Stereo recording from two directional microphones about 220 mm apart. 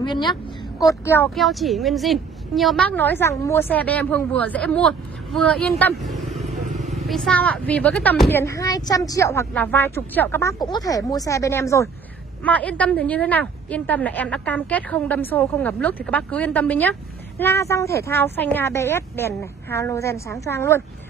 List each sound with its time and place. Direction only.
0.0 s a woman's voice: 20° left (ahead or behind)
1.0 s a woman's voice: 10° left (ahead or behind)
6.6 s vehicle: 35° right (ahead or behind)
6.9 s a woman's voice: centre (ahead or behind)